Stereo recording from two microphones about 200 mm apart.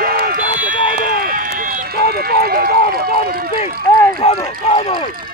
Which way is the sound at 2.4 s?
50° right (ahead or behind).